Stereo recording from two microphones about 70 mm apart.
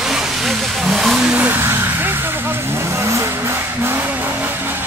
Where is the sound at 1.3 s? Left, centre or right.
Right.